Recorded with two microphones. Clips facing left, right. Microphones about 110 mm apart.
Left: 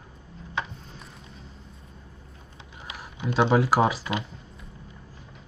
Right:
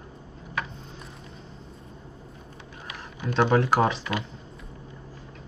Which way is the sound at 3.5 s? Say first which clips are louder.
Left 1 dB; 5° left (ahead or behind).